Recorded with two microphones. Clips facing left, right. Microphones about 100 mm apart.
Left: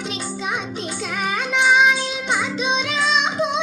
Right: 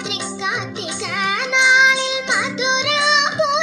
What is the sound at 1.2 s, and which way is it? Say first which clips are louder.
Music: right 1 dB; 90° right.